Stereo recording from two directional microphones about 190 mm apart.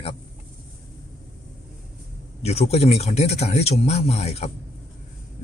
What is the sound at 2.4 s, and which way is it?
Speech, 35° left (ahead or behind).